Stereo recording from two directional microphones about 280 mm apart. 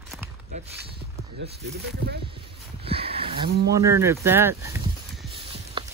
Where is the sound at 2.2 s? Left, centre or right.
Centre.